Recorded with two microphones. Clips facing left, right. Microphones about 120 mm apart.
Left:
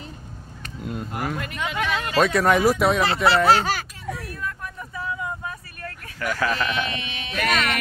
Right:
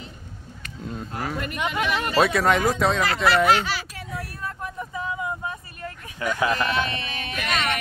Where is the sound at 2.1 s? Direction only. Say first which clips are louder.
Left 2 dB; 5° right (ahead or behind).